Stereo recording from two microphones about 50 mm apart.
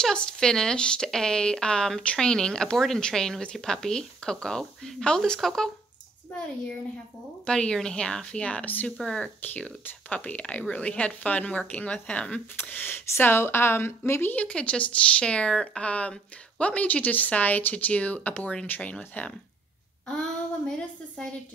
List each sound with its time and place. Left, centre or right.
0.0 s speech: centre
7.4 s speech: centre
9.4 s speech: left
12.6 s a woman's voice: left
14.3 s speech: left
20.1 s speech: centre